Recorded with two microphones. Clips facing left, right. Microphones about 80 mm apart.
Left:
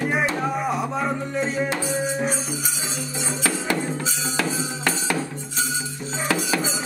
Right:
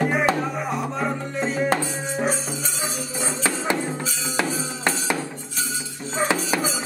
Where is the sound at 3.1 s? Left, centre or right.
Centre.